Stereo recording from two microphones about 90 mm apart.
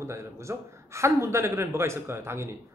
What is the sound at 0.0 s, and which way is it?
A man's voice, 35° right (ahead or behind).